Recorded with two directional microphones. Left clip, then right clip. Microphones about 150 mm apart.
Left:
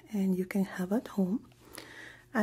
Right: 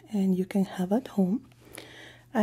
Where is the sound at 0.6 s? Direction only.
40° right (ahead or behind).